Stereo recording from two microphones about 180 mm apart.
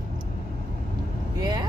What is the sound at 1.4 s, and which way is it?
Vehicle, 20° right (ahead or behind).